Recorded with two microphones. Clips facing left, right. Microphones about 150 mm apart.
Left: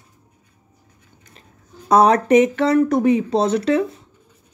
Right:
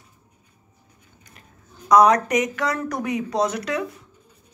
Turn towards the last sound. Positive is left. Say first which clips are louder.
# left 8 dB
turn(degrees=30)  # may be behind; listen again after turning